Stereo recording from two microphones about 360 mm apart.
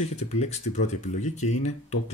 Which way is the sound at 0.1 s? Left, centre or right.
Centre.